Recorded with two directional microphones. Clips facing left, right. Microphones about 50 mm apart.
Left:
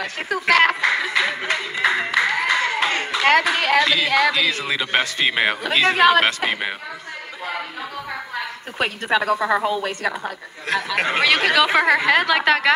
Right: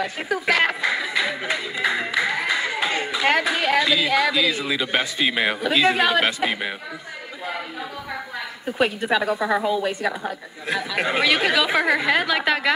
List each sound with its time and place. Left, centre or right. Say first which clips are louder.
0.0 s music: even; left
4.6 s a man's voice: left 2 dB; left
5.6 s a woman's voice: left 2 dB; left
8.4 s a sound: right 3 dB; left
9.6 s a man's voice: even; left
10.7 s a woman's voice: left 2 dB; left